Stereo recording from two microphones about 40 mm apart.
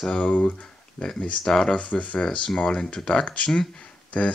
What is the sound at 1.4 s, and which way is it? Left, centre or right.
Speech, centre.